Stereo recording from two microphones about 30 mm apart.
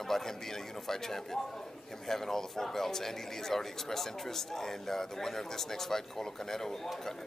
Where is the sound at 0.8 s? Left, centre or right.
Centre.